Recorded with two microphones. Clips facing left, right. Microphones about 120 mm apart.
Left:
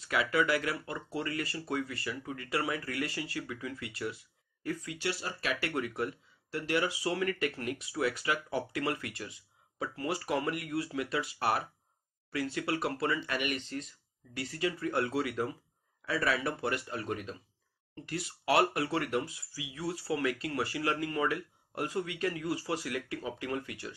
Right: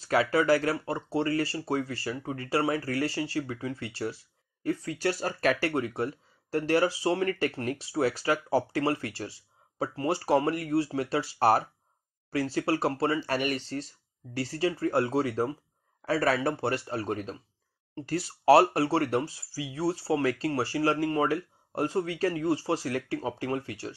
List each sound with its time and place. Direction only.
0.0 s speech: 35° right (ahead or behind)
5.7 s speech: 30° right (ahead or behind)